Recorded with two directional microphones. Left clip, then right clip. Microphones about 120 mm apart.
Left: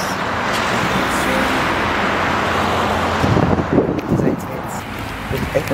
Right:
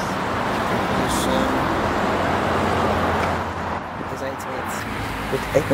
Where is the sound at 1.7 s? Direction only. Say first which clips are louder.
Left 4 dB; 25° left (ahead or behind).